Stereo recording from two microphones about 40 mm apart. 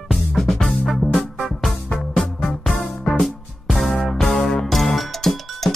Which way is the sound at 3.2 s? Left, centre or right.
Centre.